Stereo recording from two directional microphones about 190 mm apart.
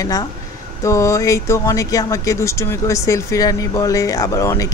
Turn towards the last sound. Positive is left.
turn(degrees=15)  # may be behind; listen again after turning